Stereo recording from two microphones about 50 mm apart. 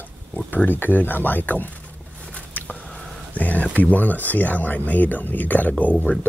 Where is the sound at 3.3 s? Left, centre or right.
Left.